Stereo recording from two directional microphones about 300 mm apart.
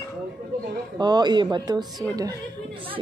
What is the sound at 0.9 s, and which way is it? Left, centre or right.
A woman's voice, centre.